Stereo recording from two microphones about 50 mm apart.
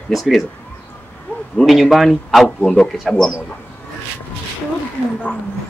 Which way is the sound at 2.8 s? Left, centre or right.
Centre.